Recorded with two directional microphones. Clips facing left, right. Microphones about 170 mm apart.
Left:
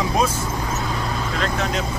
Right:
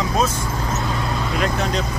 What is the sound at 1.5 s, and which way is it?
Speech, centre (ahead or behind).